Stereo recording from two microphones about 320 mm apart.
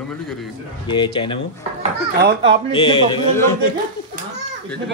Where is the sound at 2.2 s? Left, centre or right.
Right.